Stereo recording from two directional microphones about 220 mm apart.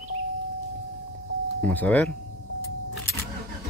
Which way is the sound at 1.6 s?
5° left (ahead or behind).